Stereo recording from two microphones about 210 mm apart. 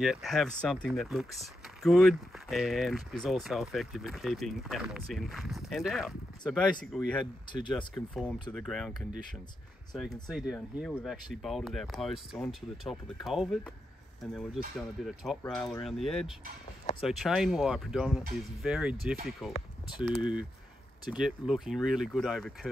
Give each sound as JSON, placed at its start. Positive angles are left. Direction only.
{"t": 0.0, "sound": "speech", "side_deg": 0}
{"t": 10.0, "sound": "speech", "side_deg": 20}
{"t": 10.3, "sound": "speech", "side_deg": 0}